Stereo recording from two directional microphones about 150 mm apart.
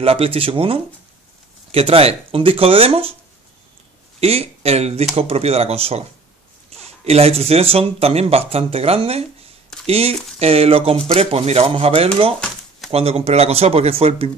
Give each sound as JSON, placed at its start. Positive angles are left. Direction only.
{"t": 0.0, "sound": "speech", "side_deg": -40}
{"t": 4.2, "sound": "speech", "side_deg": -40}